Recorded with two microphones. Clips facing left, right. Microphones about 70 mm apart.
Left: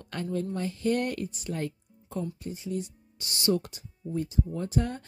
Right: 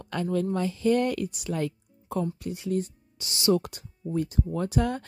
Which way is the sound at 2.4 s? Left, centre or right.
Right.